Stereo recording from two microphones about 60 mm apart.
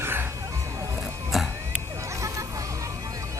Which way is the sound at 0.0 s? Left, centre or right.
Right.